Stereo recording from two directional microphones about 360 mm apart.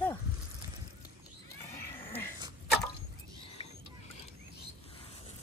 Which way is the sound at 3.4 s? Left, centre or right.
Centre.